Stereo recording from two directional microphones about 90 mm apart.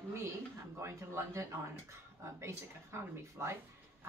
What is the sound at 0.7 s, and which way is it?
Speech, 30° right (ahead or behind).